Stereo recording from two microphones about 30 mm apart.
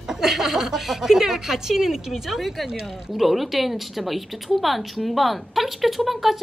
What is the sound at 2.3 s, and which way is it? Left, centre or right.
Speech, centre.